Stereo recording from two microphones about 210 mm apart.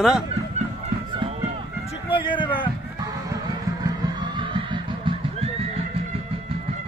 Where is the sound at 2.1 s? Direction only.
25° left (ahead or behind).